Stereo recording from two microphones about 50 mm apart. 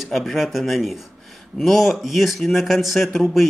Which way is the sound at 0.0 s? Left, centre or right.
Centre.